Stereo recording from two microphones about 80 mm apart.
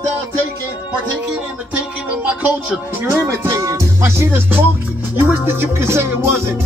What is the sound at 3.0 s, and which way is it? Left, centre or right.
Music, right.